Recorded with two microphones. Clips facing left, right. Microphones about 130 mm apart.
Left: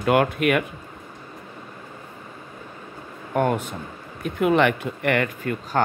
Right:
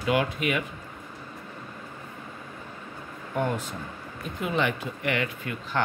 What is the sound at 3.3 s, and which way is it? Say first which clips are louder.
Speech: left 6 dB; 60° left (ahead or behind).